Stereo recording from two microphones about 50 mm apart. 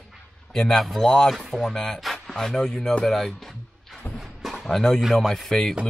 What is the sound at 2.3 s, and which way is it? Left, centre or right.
Speech, centre.